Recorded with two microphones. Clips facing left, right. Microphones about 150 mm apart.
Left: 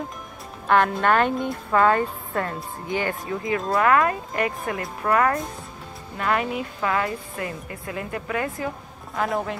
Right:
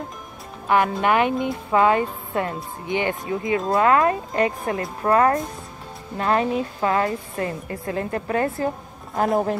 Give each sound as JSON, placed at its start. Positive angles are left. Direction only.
{"t": 0.7, "sound": "a woman's voice", "side_deg": -10}